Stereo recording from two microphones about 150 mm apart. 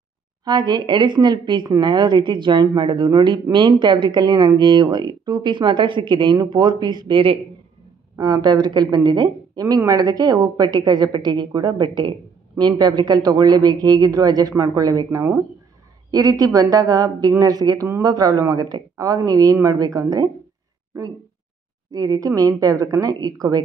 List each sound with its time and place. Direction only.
0.5 s a woman's voice: 30° right (ahead or behind)
21.9 s a woman's voice: 25° right (ahead or behind)